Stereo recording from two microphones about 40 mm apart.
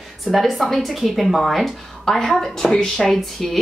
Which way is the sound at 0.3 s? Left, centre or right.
Centre.